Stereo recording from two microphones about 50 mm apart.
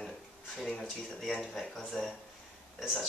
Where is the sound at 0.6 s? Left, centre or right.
Left.